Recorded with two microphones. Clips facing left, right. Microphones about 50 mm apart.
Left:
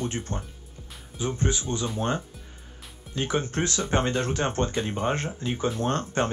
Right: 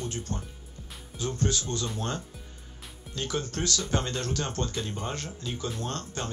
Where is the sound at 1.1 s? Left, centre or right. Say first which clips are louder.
Left 2 dB; centre.